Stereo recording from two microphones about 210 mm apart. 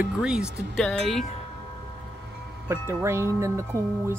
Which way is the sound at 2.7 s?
15° right (ahead or behind).